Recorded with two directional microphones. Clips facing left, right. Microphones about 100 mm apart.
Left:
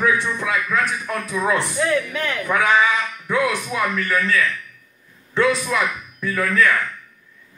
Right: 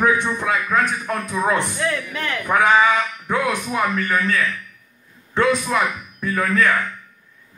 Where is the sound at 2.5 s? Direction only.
40° right (ahead or behind).